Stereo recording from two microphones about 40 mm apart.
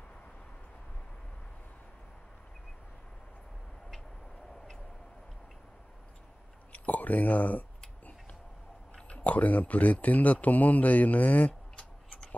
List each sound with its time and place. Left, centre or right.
6.7 s speech: left
8.9 s speech: left